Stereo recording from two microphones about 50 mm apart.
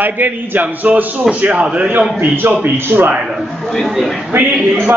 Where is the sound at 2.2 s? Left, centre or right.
Right.